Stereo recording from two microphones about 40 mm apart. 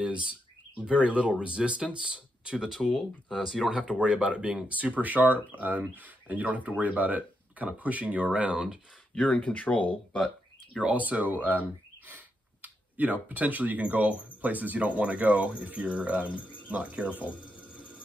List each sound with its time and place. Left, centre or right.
0.0 s speech: right; by 3.6 s centre
3.6 s speech: centre
9.1 s speech: left
10.8 s speech: right
12.6 s speech: right